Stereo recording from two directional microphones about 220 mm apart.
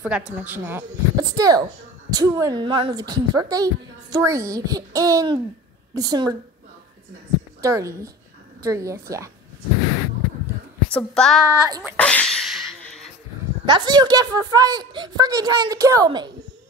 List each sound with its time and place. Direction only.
0.0 s a woman's voice: 5° right (ahead or behind)
7.6 s a woman's voice: 15° right (ahead or behind)
10.9 s a woman's voice: 5° left (ahead or behind)
11.4 s a woman's voice: 10° right (ahead or behind)
12.0 s sneeze: 5° left (ahead or behind)
13.7 s a woman's voice: 20° right (ahead or behind)